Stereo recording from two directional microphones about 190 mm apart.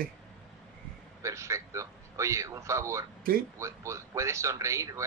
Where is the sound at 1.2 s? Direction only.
15° right (ahead or behind).